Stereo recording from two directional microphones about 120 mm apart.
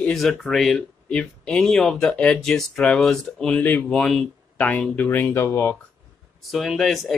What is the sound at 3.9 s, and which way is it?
Speech, centre (ahead or behind).